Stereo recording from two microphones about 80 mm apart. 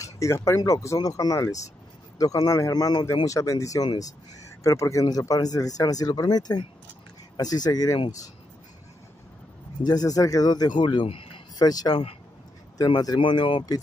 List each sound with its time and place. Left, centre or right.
0.0 s speech: left
3.3 s speech: left
9.8 s speech: left
11.6 s speech: left
13.2 s speech: left